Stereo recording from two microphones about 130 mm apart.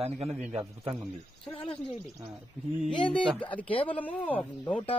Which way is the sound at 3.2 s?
10° left (ahead or behind).